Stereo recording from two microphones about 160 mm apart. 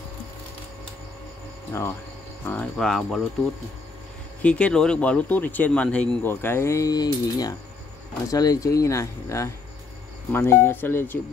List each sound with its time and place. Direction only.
1.7 s speech: 15° left (ahead or behind)
4.4 s speech: 5° left (ahead or behind)